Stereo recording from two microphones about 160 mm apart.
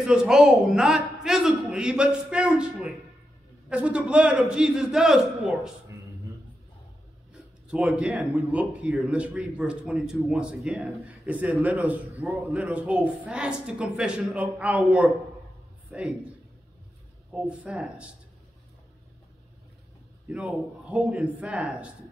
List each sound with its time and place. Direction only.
0.0 s a man's voice: 5° right (ahead or behind)
5.9 s a sound: 20° right (ahead or behind)
7.7 s a man's voice: 5° right (ahead or behind)
17.3 s a man's voice: 5° right (ahead or behind)
20.2 s a man's voice: 5° right (ahead or behind)